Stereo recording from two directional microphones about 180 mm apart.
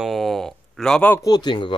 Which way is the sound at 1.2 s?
25° left (ahead or behind).